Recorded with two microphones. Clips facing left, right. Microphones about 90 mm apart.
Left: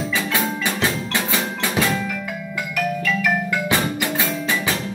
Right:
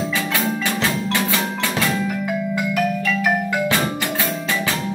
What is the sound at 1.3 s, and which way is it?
Percussion, 20° left (ahead or behind).